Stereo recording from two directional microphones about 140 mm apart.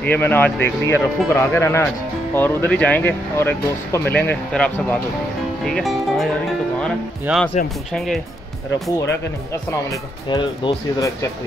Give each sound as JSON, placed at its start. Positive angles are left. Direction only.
{"t": 0.0, "sound": "speech", "side_deg": 15}
{"t": 7.3, "sound": "speech", "side_deg": -10}
{"t": 9.7, "sound": "speech", "side_deg": 25}